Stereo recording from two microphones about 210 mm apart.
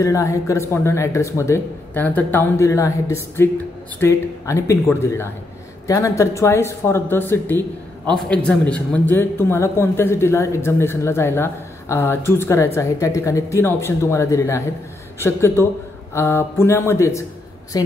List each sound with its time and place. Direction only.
0.0 s a man's voice: 15° left (ahead or behind)